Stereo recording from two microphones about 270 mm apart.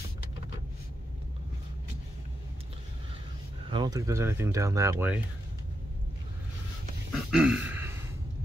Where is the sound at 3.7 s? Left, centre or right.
Centre.